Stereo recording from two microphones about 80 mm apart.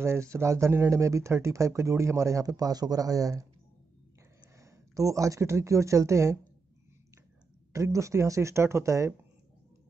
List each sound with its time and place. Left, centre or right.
0.0 s speech: right
4.6 s a woman's voice: right
7.7 s speech: right